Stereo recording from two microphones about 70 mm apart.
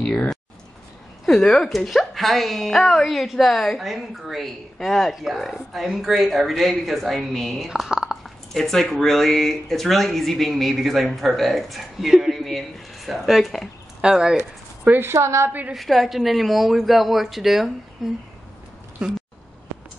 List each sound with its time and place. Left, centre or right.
0.0 s a woman's voice: centre
14.9 s a woman's voice: right
15.7 s a woman's voice: centre
19.0 s speech: centre